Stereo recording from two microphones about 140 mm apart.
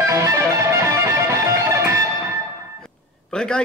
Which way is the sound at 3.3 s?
5° left (ahead or behind).